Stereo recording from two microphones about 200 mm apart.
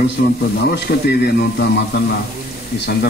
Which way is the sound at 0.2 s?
50° left (ahead or behind).